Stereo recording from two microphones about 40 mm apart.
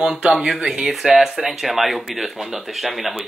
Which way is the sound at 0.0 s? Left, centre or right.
Centre.